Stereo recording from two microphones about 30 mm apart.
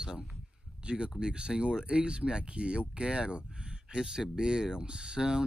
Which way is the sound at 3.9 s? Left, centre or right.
Right.